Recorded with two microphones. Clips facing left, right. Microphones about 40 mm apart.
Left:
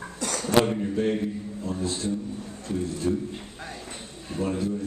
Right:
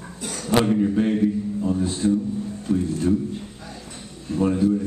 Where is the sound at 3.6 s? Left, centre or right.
Left.